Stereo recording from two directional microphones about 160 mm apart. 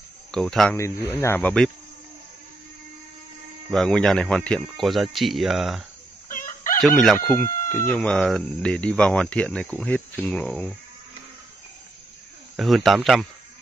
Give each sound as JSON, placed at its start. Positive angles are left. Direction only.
{"t": 0.3, "sound": "speech", "side_deg": 5}
{"t": 3.7, "sound": "speech", "side_deg": 5}
{"t": 6.2, "sound": "chicken", "side_deg": 60}
{"t": 6.8, "sound": "speech", "side_deg": 0}
{"t": 12.5, "sound": "speech", "side_deg": 0}